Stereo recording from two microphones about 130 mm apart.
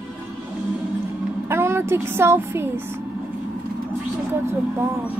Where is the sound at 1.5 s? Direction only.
20° right (ahead or behind).